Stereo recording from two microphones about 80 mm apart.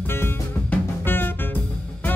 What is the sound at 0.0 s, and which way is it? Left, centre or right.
Music, left.